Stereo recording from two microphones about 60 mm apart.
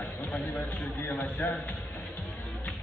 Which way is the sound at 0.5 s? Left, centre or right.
Left.